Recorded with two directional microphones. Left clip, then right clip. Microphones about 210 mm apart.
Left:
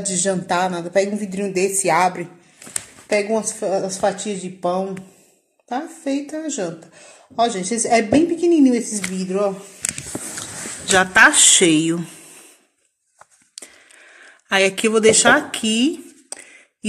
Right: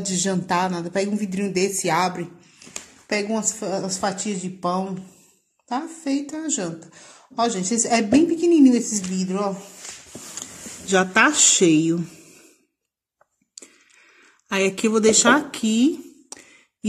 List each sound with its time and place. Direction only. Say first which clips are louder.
0.0 s speech: left 4 dB; 55° right (ahead or behind)
10.9 s a woman's voice: left 5 dB; 45° right (ahead or behind)
14.1 s a sound: left 6 dB; 50° right (ahead or behind)
14.8 s speech: left 4 dB; 55° right (ahead or behind)